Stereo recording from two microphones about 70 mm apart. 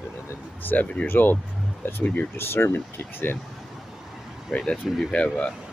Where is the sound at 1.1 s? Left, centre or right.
Left.